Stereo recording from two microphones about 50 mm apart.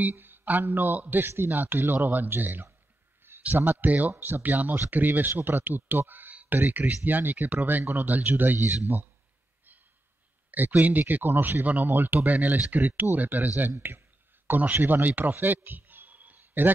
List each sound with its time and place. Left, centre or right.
0.0 s speech: right
1.2 s speech: right
3.3 s a sound: right
3.8 s speech: right
10.5 s speech: right
13.8 s speech: right
14.5 s a man's voice: right